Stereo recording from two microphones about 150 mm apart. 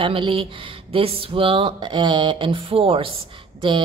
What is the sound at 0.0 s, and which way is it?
Speech, 35° right (ahead or behind).